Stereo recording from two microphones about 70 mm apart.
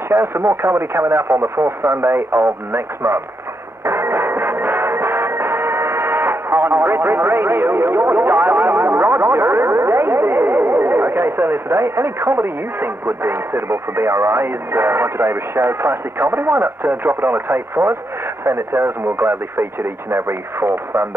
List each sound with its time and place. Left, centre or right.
0.1 s speech: right
3.8 s music: right
18.4 s speech: right